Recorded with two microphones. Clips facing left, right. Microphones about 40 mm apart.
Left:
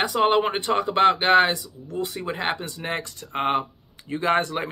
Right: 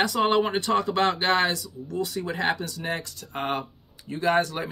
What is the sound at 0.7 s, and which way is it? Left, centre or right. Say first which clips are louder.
Speech: left 1 dB; centre.